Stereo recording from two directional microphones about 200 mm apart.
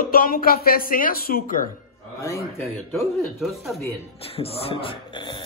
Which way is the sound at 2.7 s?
Centre (ahead or behind).